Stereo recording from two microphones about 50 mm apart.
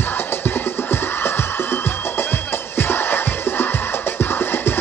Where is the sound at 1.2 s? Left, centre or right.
Left.